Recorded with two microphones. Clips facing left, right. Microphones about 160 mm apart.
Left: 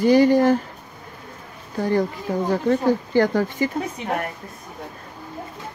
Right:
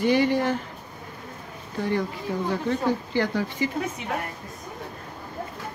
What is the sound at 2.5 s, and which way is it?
Speech, 45° left (ahead or behind).